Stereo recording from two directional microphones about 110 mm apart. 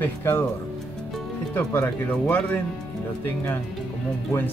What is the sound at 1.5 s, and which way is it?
Speech, 20° left (ahead or behind).